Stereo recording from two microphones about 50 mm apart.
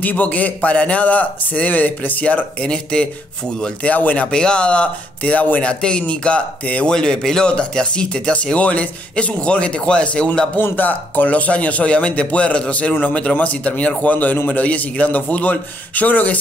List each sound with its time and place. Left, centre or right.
0.0 s a man's voice: left
4.3 s speech: centre
6.9 s speech: centre
10.6 s speech: left
14.6 s a man's voice: left